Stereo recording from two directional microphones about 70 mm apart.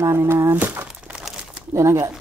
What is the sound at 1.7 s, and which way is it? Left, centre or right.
Speech, right.